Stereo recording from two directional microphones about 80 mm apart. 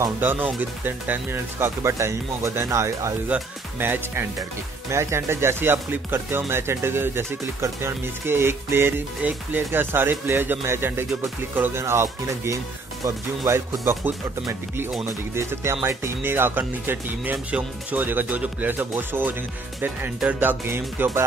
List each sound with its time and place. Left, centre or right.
0.2 s speech: right
3.3 s speech: centre
13.0 s speech: right
13.8 s speech: right
20.3 s speech: right